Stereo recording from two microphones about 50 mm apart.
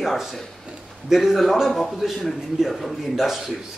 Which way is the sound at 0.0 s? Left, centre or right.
Centre.